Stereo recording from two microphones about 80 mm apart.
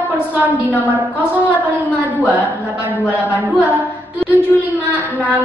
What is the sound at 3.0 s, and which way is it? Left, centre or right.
A woman's voice, centre.